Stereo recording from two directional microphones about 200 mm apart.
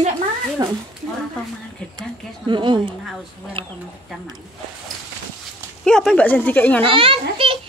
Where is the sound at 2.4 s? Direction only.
20° right (ahead or behind).